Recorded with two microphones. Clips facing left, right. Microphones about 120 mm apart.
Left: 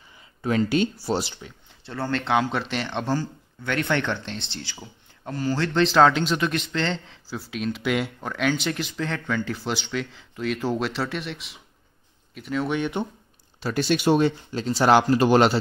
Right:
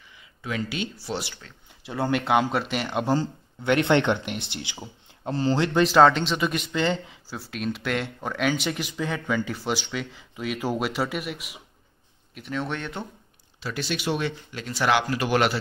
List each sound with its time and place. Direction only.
0.4 s speech: 40° left (ahead or behind)
1.8 s speech: 15° right (ahead or behind)
3.2 s speech: 20° right (ahead or behind)
5.7 s speech: 5° right (ahead or behind); by 13.0 s 10° left (ahead or behind)
13.6 s speech: 40° left (ahead or behind)